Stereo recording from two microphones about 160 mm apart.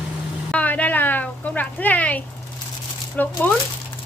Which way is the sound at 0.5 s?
10° left (ahead or behind).